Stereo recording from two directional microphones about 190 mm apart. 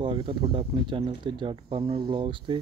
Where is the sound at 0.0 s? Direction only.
25° right (ahead or behind).